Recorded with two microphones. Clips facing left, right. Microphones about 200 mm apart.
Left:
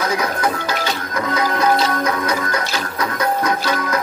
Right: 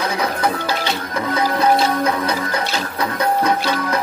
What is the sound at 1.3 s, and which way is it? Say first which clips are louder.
Music: right 1 dB; 30° right (ahead or behind).